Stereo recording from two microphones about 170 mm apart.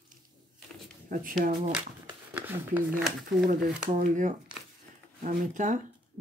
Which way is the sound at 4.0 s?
45° right (ahead or behind).